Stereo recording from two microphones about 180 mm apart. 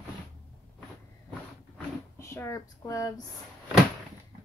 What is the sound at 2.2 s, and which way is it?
Speech, 15° left (ahead or behind).